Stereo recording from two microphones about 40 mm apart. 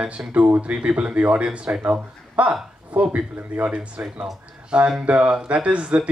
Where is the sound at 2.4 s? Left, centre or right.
Right.